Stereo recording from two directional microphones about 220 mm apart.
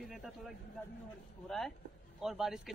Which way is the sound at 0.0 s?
Centre (ahead or behind).